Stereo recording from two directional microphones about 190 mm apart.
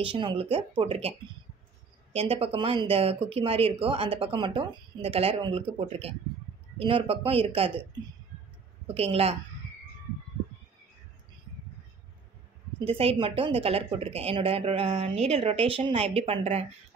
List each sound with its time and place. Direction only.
0.0 s speech: 25° right (ahead or behind)
2.1 s speech: 30° right (ahead or behind)
8.8 s speech: 30° right (ahead or behind)
12.8 s speech: 30° right (ahead or behind)